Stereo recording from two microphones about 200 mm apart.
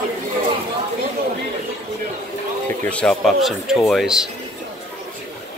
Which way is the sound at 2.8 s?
5° left (ahead or behind).